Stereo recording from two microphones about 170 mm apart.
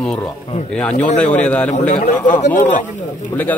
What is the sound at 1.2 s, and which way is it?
Speech, 5° left (ahead or behind).